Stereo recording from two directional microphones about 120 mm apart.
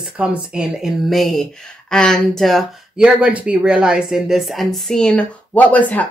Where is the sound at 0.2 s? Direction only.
10° right (ahead or behind).